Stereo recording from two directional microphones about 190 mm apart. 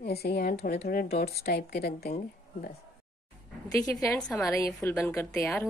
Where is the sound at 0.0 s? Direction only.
55° left (ahead or behind).